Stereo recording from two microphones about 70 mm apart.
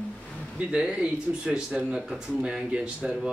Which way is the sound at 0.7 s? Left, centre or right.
Centre.